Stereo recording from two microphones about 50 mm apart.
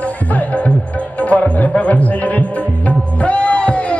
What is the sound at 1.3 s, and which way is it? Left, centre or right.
Music, left.